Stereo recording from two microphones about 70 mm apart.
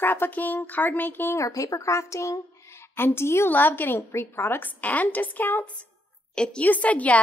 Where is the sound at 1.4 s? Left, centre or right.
Left.